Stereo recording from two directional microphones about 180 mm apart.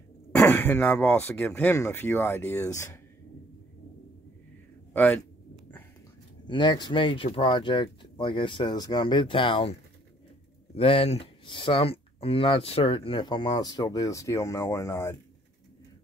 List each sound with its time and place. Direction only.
0.4 s speech: 10° left (ahead or behind)
6.4 s speech: 25° left (ahead or behind)